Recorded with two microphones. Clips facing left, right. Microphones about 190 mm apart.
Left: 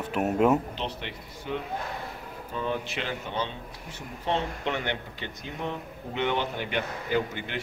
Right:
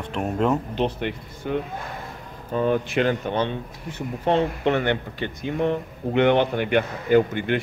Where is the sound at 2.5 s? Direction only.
50° right (ahead or behind).